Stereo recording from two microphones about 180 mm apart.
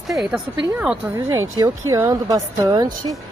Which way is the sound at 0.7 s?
10° right (ahead or behind).